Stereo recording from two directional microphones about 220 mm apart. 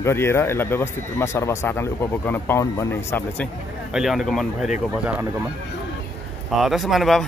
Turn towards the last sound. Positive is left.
turn(degrees=0)  # may be behind; listen again after turning